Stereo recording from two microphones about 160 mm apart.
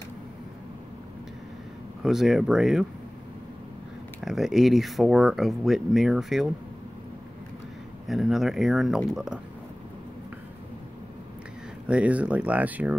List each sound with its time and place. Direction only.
2.0 s speech: centre (ahead or behind)
4.2 s speech: centre (ahead or behind)
8.1 s speech: centre (ahead or behind)
11.9 s speech: 10° right (ahead or behind)